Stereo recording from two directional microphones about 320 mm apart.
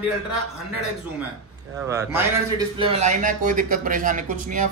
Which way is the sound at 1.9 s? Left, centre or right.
Centre.